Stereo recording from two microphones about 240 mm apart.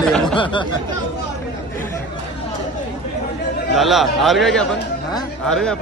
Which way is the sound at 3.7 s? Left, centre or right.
Centre.